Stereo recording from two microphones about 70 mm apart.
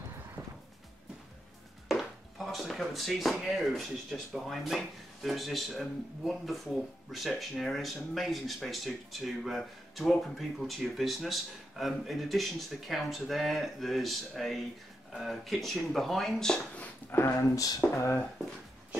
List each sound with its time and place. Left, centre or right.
1.9 s speech: centre
16.7 s a sound: left
17.3 s speech: left